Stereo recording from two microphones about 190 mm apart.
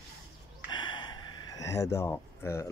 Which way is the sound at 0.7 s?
25° left (ahead or behind).